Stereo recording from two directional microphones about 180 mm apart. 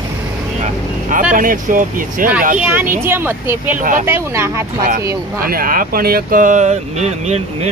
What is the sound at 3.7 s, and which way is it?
Speech, 45° right (ahead or behind).